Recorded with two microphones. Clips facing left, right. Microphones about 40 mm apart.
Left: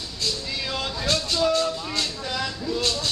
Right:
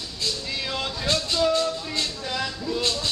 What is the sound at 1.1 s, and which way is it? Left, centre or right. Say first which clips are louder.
Music: even; centre.